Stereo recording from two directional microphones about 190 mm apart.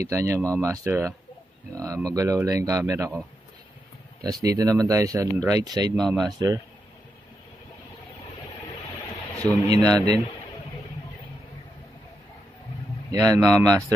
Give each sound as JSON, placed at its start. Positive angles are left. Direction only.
{"t": 0.0, "sound": "speech", "side_deg": -15}
{"t": 4.2, "sound": "speech", "side_deg": -20}
{"t": 9.4, "sound": "speech", "side_deg": 5}
{"t": 10.0, "sound": "a man's voice", "side_deg": 30}
{"t": 13.1, "sound": "speech", "side_deg": -20}